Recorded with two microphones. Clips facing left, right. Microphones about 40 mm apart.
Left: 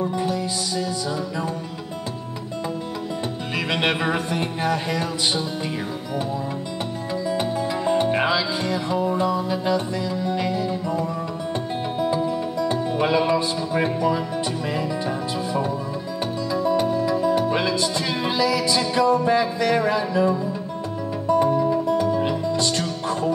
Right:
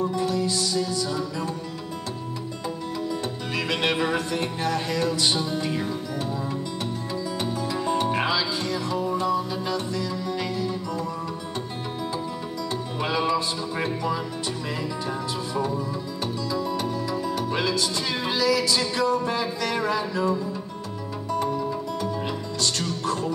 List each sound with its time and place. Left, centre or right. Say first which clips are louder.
0.0 s music: left 1 dB; left
3.5 s music: left 2 dB; left
5.4 s speech: even; centre
7.1 s music: left 7 dB; left
14.7 s speech: left 4 dB; centre
17.1 s music: left 6 dB; centre
19.6 s speech: left 5 dB; centre
21.4 s music: left 6 dB; left
22.0 s music: left 7 dB; centre
23.0 s music: left 3 dB; left